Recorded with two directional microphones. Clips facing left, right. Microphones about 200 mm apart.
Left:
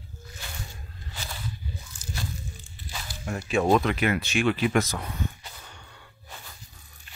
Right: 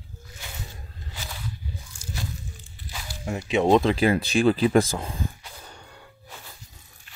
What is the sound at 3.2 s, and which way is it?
Speech, 20° right (ahead or behind).